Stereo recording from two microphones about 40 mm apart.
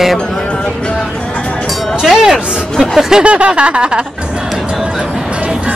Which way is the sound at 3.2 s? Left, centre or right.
Right.